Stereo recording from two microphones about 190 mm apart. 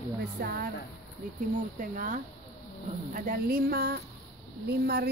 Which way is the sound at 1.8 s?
45° right (ahead or behind).